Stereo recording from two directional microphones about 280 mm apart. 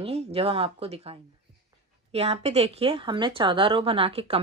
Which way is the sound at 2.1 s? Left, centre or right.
Right.